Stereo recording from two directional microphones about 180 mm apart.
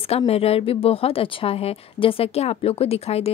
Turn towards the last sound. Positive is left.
turn(degrees=35)  # may be behind; listen again after turning